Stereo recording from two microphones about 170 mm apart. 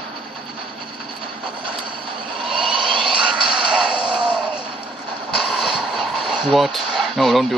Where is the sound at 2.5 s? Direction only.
30° right (ahead or behind).